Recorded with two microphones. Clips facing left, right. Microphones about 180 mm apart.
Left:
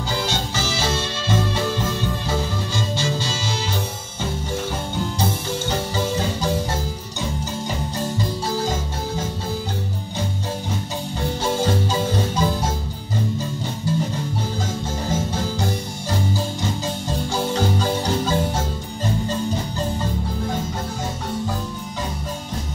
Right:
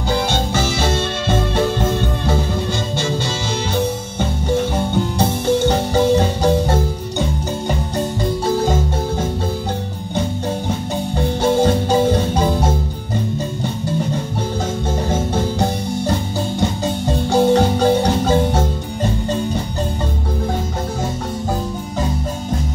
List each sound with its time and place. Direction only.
0.3 s music: 60° right (ahead or behind)
5.6 s music: 60° right (ahead or behind)
11.4 s marimba: 60° right (ahead or behind)
16.1 s marimba: 60° right (ahead or behind)